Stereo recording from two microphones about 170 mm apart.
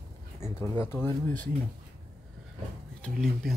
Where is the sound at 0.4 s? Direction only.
15° left (ahead or behind).